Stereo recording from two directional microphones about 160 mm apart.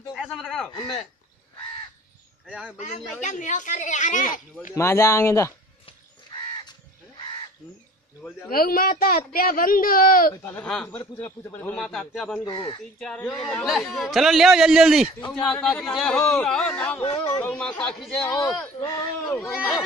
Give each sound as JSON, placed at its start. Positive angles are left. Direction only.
{"t": 0.4, "sound": "a man's voice", "side_deg": 0}
{"t": 3.2, "sound": "speech", "side_deg": 50}
{"t": 4.7, "sound": "a man's voice", "side_deg": 15}
{"t": 5.9, "sound": "crow", "side_deg": 30}
{"t": 8.5, "sound": "speech", "side_deg": 65}
{"t": 10.3, "sound": "a man's voice", "side_deg": 15}
{"t": 12.4, "sound": "speech", "side_deg": 35}
{"t": 13.0, "sound": "a man's voice", "side_deg": 5}
{"t": 17.0, "sound": "speech", "side_deg": 25}
{"t": 17.4, "sound": "a man's voice", "side_deg": 5}
{"t": 18.8, "sound": "a man's voice", "side_deg": 15}
{"t": 19.3, "sound": "a man's voice", "side_deg": 0}